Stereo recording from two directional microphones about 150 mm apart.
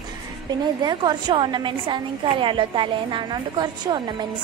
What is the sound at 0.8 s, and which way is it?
A woman's voice, 30° right (ahead or behind).